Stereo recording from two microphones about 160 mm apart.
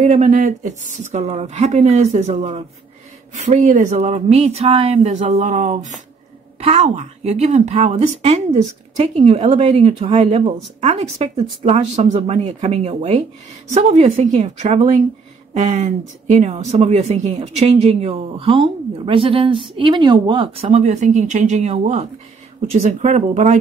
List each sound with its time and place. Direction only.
0.0 s a woman's voice: 50° right (ahead or behind)
6.6 s a woman's voice: 40° right (ahead or behind)